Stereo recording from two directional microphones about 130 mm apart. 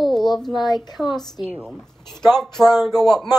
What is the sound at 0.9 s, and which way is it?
Speech, centre (ahead or behind).